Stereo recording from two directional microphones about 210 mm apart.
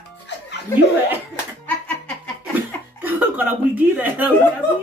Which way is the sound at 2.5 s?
10° right (ahead or behind).